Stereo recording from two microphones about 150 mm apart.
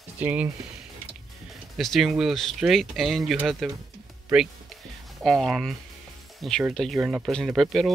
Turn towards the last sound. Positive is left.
turn(degrees=0)  # may be behind; listen again after turning